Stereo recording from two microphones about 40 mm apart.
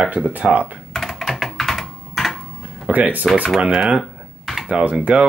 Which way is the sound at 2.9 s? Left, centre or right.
Right.